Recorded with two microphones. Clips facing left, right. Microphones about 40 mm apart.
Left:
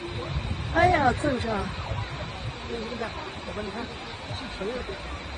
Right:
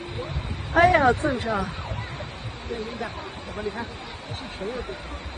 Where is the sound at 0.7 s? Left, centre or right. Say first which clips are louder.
Right 3 dB; right.